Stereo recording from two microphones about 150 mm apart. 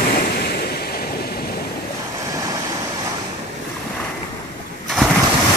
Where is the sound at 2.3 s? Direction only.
25° right (ahead or behind).